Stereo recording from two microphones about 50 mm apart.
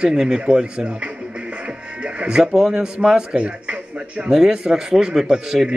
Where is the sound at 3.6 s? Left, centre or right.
Right.